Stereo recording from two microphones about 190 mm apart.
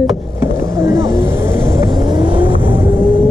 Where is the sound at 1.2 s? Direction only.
10° right (ahead or behind).